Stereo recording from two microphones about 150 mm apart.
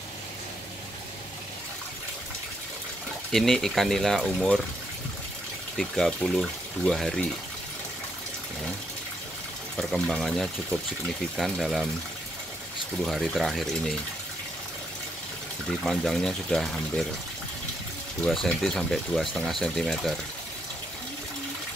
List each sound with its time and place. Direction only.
3.3 s speech: 5° left (ahead or behind)
5.8 s speech: centre (ahead or behind)
9.8 s speech: centre (ahead or behind)
13.0 s speech: centre (ahead or behind)
15.8 s speech: centre (ahead or behind)
18.2 s speech: centre (ahead or behind)